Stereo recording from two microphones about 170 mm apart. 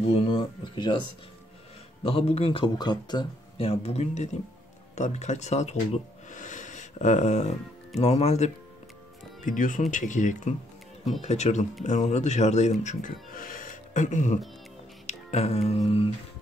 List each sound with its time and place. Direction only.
0.1 s speech: 35° left (ahead or behind)
2.0 s speech: 35° left (ahead or behind)
6.3 s a sound: 45° left (ahead or behind)
8.0 s speech: 40° left (ahead or behind)
9.4 s speech: 50° left (ahead or behind)
15.0 s music: 40° left (ahead or behind)